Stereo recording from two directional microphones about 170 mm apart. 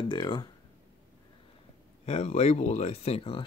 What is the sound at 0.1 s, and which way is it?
Speech, 25° left (ahead or behind).